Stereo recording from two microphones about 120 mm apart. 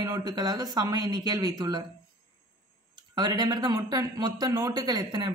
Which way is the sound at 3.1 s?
35° right (ahead or behind).